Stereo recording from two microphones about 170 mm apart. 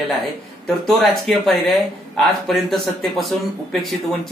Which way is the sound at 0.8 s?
Centre (ahead or behind).